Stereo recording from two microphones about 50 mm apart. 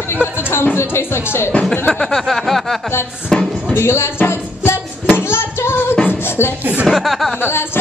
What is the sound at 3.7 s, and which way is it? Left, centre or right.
Speech, left.